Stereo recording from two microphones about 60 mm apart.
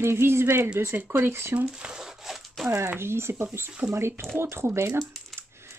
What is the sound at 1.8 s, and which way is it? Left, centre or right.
Speech, centre.